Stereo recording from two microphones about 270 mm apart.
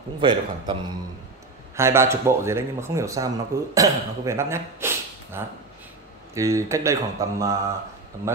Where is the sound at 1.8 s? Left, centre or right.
Centre.